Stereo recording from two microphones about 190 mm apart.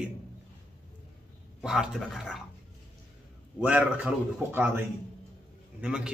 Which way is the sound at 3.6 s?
10° right (ahead or behind).